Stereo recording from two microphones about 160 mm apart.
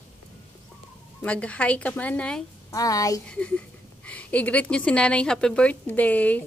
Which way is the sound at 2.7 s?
20° left (ahead or behind).